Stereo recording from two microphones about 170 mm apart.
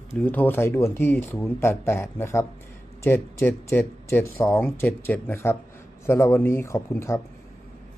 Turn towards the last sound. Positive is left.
turn(degrees=15)  # may be behind; listen again after turning